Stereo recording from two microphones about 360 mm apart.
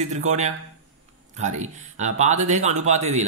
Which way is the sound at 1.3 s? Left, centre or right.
Centre.